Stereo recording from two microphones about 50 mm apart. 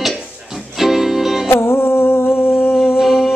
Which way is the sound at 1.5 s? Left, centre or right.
Left.